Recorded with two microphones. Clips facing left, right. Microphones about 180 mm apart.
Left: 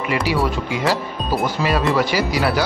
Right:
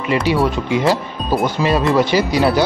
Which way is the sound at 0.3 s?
25° right (ahead or behind).